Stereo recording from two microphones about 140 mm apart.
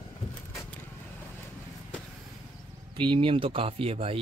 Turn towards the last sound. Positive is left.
turn(degrees=-45)  # may be behind; listen again after turning